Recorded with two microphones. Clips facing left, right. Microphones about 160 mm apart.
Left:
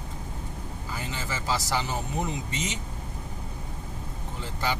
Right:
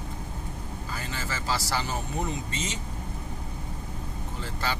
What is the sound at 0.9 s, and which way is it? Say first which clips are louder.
Speech: left 1 dB; 20° left (ahead or behind).